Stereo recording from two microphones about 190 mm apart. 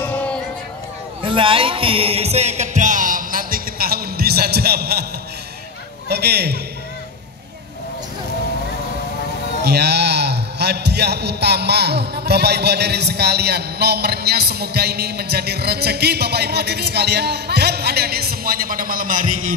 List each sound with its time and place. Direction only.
0.0 s a sound: 10° left (ahead or behind)
1.2 s music: 25° right (ahead or behind); by 5.0 s 55° right (ahead or behind)
6.0 s a man's voice: 55° right (ahead or behind)
9.6 s a man's voice: 60° right (ahead or behind); by 19.5 s 45° right (ahead or behind)